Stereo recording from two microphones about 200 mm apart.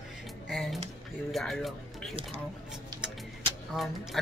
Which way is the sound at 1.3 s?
Centre (ahead or behind).